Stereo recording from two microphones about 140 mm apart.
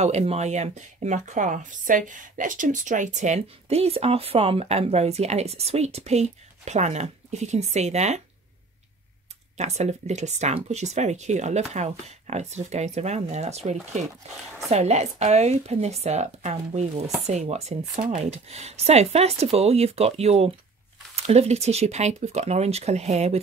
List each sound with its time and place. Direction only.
0.0 s speech: 50° right (ahead or behind)
9.6 s speech: 55° right (ahead or behind)